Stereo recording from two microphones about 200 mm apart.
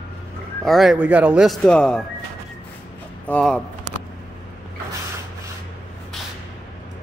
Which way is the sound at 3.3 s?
5° left (ahead or behind).